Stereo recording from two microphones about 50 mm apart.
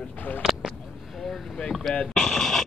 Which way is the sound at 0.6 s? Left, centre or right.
Centre.